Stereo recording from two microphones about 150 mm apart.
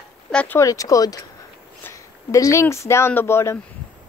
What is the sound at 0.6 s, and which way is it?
Speech, 25° left (ahead or behind).